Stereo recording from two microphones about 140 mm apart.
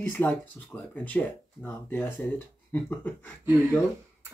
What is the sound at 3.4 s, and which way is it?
Speech, 15° right (ahead or behind).